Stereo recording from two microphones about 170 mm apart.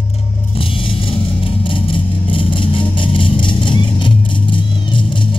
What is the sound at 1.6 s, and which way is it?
Music, 30° left (ahead or behind).